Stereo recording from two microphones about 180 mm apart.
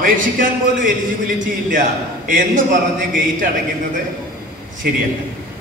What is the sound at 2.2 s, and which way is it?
Speech, 45° right (ahead or behind).